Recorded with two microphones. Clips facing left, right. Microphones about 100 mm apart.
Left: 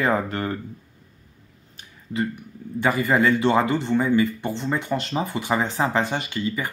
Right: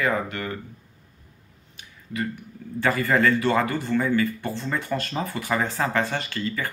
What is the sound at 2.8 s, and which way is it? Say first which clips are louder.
Speech: left 1 dB; 15° left (ahead or behind).